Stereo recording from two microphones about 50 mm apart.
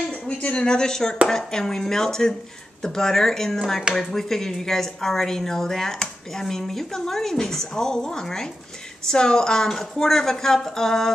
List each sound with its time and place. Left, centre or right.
0.4 s speech: left